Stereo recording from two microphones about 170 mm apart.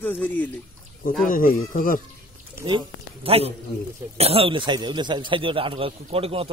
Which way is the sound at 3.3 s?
35° right (ahead or behind).